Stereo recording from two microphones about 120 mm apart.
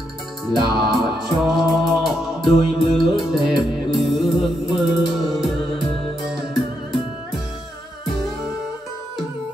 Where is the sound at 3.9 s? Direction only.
Centre (ahead or behind).